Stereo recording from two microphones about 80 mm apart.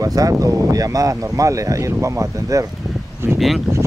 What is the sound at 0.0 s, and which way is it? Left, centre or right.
Speech, right.